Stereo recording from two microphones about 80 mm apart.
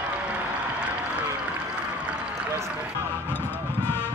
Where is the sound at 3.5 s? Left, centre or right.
Left.